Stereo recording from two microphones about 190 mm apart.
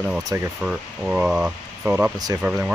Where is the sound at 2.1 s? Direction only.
20° right (ahead or behind).